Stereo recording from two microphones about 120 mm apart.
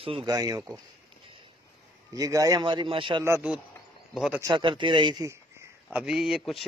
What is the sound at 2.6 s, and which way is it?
Speech, 40° right (ahead or behind).